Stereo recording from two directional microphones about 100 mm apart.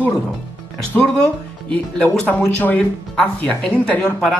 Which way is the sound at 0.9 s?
15° left (ahead or behind).